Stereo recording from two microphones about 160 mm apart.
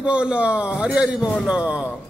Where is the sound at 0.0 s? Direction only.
5° right (ahead or behind).